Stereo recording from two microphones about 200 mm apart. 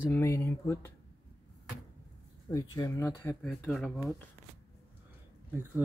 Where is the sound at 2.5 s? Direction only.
20° left (ahead or behind); by 4.1 s centre (ahead or behind).